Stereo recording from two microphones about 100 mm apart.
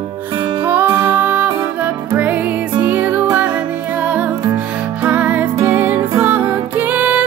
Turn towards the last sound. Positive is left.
turn(degrees=-15)  # may be behind; listen again after turning